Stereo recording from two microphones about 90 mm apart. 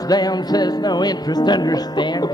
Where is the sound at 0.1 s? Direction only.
50° left (ahead or behind).